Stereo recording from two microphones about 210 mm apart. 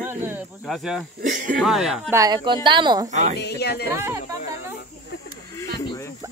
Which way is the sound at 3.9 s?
15° right (ahead or behind).